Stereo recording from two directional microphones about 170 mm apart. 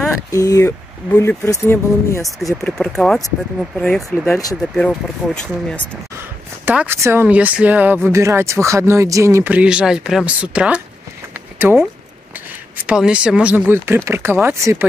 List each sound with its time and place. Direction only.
0.3 s speech: 20° left (ahead or behind)
2.6 s speech: 5° left (ahead or behind)
6.6 s speech: 10° right (ahead or behind)
11.5 s a sound: 15° right (ahead or behind)
12.8 s speech: 5° right (ahead or behind)